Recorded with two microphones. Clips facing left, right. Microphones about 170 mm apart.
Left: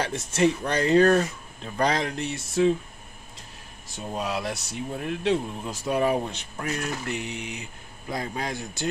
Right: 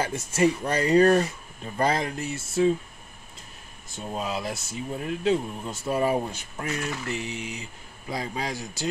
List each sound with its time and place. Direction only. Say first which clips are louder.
0.1 s speech: even; 10° right (ahead or behind)
3.9 s speech: left 1 dB; centre (ahead or behind)
8.5 s speech: even; 55° left (ahead or behind)